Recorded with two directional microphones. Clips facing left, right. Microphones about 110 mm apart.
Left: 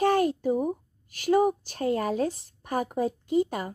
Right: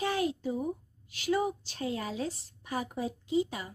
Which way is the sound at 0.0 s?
55° left (ahead or behind).